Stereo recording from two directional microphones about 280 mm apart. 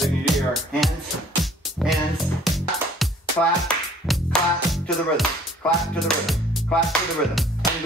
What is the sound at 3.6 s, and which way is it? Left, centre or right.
Speech, centre.